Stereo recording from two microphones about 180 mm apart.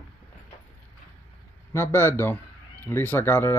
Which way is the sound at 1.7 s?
15° left (ahead or behind).